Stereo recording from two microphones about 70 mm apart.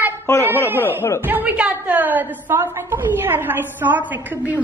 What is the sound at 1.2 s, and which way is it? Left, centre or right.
A woman's voice, right.